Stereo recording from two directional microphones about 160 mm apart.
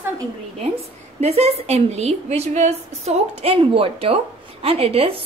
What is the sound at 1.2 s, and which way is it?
A woman's voice, 40° right (ahead or behind).